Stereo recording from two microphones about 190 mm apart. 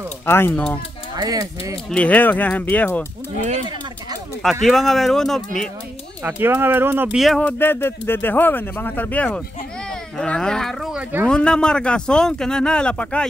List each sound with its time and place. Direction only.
0.3 s speech: 10° left (ahead or behind)
1.1 s speech: 20° right (ahead or behind)
1.9 s speech: 5° left (ahead or behind)
4.4 s speech: centre (ahead or behind)
6.2 s speech: 10° right (ahead or behind)
11.2 s speech: 5° left (ahead or behind)